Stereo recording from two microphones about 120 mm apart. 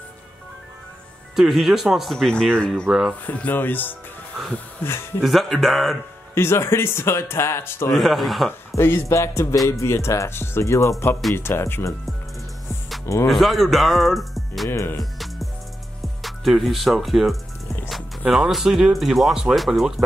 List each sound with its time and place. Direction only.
1.3 s speech: centre (ahead or behind)
3.3 s speech: 15° left (ahead or behind)
5.2 s speech: centre (ahead or behind)
6.3 s speech: 20° left (ahead or behind)
7.9 s speech: centre (ahead or behind)
8.7 s speech: 20° left (ahead or behind)
13.0 s speech: 25° left (ahead or behind)
13.3 s speech: centre (ahead or behind)
14.7 s speech: 20° left (ahead or behind)
15.1 s music: centre (ahead or behind)
16.0 s speech: centre (ahead or behind)